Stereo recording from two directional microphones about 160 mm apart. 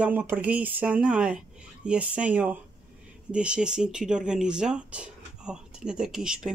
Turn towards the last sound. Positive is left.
turn(degrees=-5)  # may be behind; listen again after turning